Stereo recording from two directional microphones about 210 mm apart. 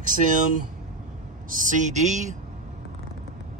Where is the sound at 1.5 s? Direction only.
40° right (ahead or behind).